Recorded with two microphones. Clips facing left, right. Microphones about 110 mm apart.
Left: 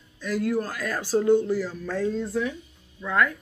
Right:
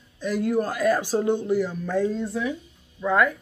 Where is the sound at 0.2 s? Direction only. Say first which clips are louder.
Right 2 dB; 20° right (ahead or behind).